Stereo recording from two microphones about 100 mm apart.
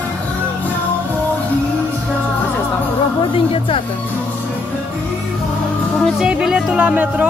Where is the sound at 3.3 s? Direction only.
65° left (ahead or behind).